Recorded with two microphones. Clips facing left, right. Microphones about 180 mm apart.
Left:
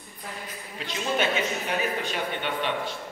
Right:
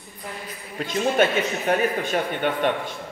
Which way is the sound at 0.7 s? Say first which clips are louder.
Right 7 dB; 45° right (ahead or behind).